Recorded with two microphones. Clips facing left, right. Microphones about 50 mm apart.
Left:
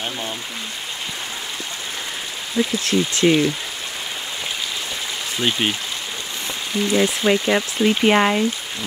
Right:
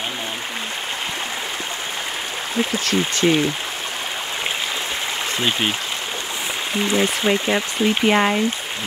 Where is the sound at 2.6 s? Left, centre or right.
Right.